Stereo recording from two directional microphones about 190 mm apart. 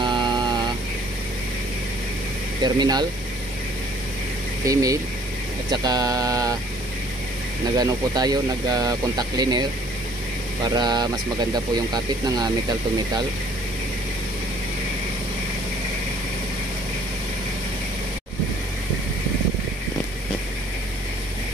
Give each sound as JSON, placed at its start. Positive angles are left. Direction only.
{"t": 0.0, "sound": "a sound", "side_deg": -25}
{"t": 2.6, "sound": "speech", "side_deg": -20}
{"t": 4.6, "sound": "speech", "side_deg": -20}
{"t": 7.7, "sound": "speech", "side_deg": -20}